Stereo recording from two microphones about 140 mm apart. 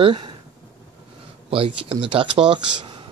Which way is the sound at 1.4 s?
40° right (ahead or behind).